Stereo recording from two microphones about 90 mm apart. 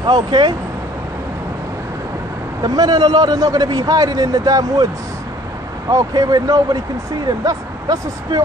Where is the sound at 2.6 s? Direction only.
45° right (ahead or behind).